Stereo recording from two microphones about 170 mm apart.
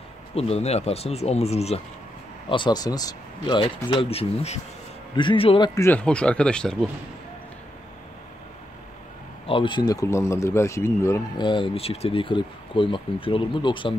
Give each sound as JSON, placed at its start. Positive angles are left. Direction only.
{"t": 0.3, "sound": "speech", "side_deg": 35}
{"t": 2.5, "sound": "speech", "side_deg": 25}
{"t": 5.8, "sound": "speech", "side_deg": 10}
{"t": 9.5, "sound": "speech", "side_deg": 30}